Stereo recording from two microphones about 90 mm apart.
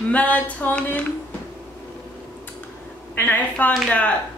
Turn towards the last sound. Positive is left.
turn(degrees=15)  # may be behind; listen again after turning